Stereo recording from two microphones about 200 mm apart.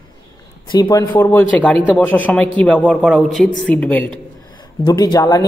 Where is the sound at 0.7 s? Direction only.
20° left (ahead or behind).